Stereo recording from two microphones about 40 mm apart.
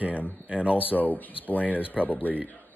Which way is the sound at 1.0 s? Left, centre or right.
Left.